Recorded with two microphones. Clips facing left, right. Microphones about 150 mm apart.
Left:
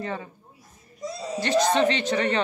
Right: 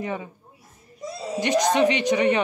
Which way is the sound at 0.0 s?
15° right (ahead or behind).